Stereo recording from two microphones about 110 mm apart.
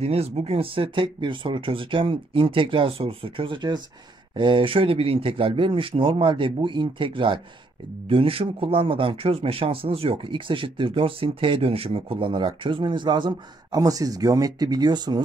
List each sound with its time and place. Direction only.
0.0 s speech: 70° right (ahead or behind); by 15.2 s 40° right (ahead or behind)